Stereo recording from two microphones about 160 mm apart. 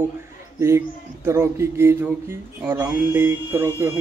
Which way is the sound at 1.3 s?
15° right (ahead or behind).